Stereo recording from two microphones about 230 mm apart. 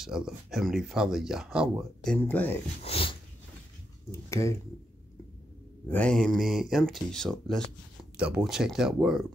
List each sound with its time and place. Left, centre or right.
0.0 s speech: centre
2.1 s speech: centre
2.8 s speech: left
4.1 s speech: centre
5.9 s speech: centre